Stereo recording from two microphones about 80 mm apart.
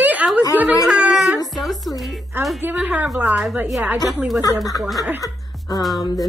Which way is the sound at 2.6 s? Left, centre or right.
Right.